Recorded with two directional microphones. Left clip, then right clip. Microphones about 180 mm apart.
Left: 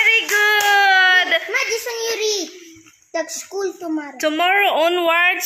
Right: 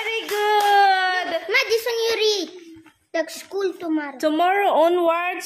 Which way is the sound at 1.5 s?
35° right (ahead or behind).